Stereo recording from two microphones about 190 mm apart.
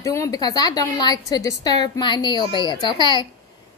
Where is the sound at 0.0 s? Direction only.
15° left (ahead or behind).